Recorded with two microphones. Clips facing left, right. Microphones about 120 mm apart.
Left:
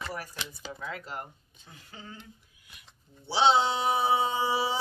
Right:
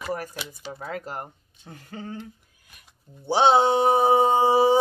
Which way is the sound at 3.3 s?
50° right (ahead or behind).